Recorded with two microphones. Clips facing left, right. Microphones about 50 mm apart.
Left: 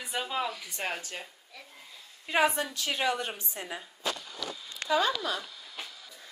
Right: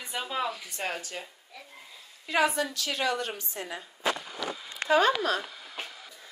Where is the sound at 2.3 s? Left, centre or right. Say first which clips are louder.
Right 1 dB; left.